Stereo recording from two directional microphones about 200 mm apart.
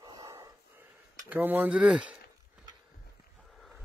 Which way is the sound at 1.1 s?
10° right (ahead or behind).